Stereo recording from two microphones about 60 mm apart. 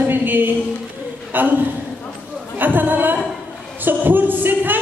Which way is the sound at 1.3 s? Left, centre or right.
Right.